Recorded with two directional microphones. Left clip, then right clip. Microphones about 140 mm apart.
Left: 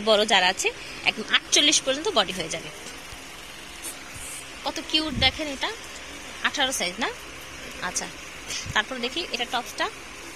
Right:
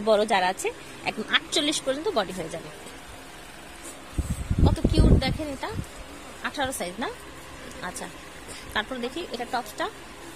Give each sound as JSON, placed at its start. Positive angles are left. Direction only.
{"t": 0.0, "sound": "speech", "side_deg": -15}
{"t": 4.6, "sound": "speech", "side_deg": -5}
{"t": 8.7, "sound": "speech", "side_deg": -20}
{"t": 9.4, "sound": "a woman's voice", "side_deg": -5}